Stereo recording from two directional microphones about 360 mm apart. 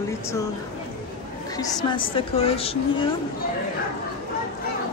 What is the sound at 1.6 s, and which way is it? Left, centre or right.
A woman's voice, centre.